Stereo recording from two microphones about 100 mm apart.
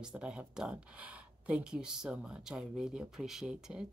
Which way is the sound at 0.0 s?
10° right (ahead or behind).